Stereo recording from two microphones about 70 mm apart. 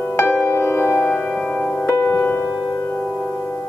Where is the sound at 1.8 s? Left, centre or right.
Left.